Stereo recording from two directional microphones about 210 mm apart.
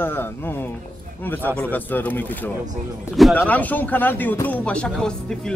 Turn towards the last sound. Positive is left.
turn(degrees=5)  # may be behind; listen again after turning